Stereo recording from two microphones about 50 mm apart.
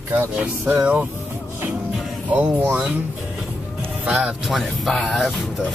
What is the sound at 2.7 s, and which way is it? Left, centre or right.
Speech, right.